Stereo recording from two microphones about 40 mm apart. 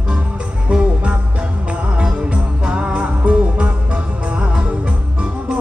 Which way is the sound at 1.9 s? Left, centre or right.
Right.